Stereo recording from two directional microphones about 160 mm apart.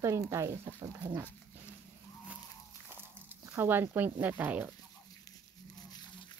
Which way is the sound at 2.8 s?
15° right (ahead or behind).